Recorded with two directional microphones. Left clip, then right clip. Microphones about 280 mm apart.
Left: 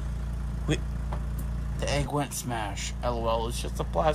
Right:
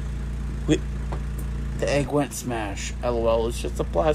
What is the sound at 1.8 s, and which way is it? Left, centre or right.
Speech, centre.